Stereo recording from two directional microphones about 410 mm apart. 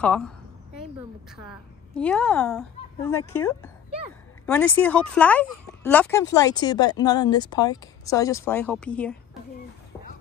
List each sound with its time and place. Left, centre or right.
0.0 s speech: centre
1.3 s a woman's voice: centre